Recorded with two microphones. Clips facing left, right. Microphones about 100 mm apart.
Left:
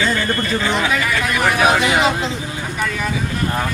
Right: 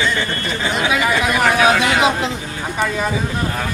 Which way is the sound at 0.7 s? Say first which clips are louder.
Right 1 dB; 15° right (ahead or behind).